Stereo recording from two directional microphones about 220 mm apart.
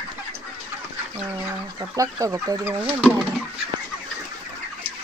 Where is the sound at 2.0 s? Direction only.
15° right (ahead or behind).